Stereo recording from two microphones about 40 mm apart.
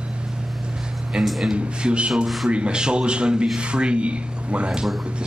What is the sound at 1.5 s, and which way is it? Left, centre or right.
A man's voice, right.